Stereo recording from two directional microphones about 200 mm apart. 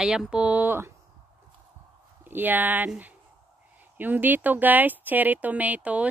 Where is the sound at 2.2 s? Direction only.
10° right (ahead or behind).